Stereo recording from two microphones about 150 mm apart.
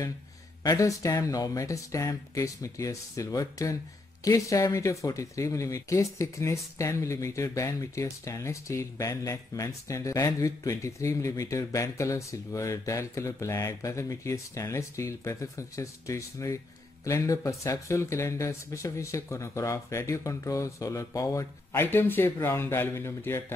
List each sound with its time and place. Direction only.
0.7 s speech: 20° left (ahead or behind)